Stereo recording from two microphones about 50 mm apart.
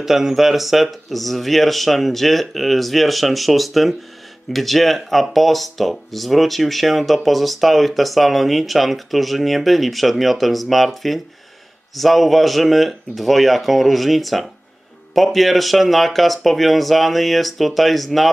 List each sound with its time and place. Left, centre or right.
0.0 s speech: centre